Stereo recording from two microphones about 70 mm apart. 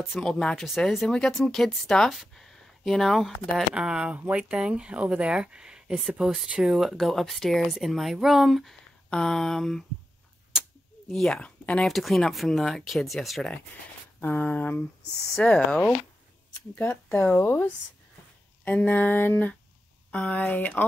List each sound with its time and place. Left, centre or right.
0.0 s speech: centre
3.7 s speech: centre
11.1 s speech: centre
11.8 s speech: centre
14.2 s a sound: left
16.7 s speech: left
18.6 s a sound: left